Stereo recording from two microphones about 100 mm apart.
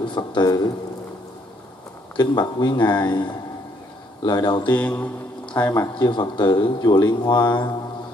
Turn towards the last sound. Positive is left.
turn(degrees=45)  # may be behind; listen again after turning